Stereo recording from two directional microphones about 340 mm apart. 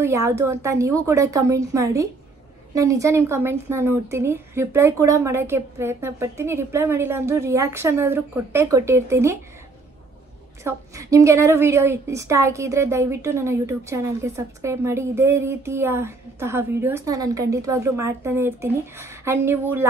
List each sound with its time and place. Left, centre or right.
0.0 s a woman's voice: centre
10.6 s a woman's voice: centre